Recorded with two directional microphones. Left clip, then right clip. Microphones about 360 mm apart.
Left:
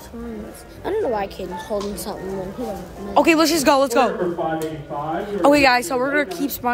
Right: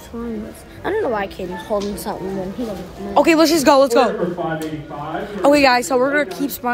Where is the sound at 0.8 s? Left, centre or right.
Centre.